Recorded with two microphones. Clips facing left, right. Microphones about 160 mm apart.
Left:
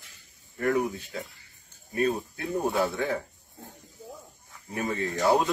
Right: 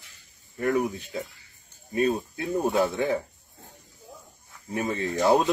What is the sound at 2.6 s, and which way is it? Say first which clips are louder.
Speech: right 3 dB; 20° right (ahead or behind).